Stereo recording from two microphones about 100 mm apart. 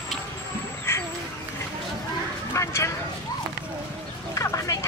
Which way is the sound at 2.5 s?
30° left (ahead or behind).